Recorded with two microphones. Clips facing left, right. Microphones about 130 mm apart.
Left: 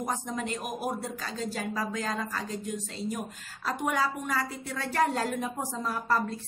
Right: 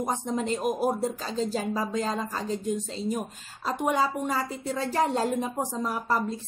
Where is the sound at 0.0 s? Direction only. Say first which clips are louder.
Right 4 dB; 25° right (ahead or behind).